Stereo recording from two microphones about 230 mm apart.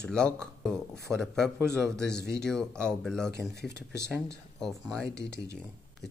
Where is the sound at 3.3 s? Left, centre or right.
Left.